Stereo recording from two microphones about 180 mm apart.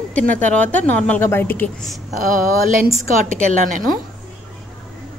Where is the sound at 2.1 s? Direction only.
50° right (ahead or behind).